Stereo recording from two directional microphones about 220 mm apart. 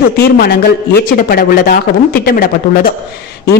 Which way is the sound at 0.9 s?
40° left (ahead or behind).